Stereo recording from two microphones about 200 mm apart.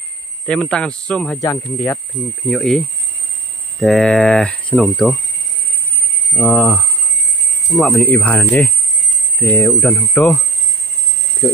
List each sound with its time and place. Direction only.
0.5 s speech: 5° left (ahead or behind)
1.4 s speech: 15° left (ahead or behind)
2.5 s speech: centre (ahead or behind)
3.8 s speech: 5° left (ahead or behind)
6.3 s speech: 5° left (ahead or behind)